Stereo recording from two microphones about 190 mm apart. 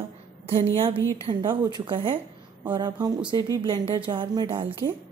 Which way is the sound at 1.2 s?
25° right (ahead or behind).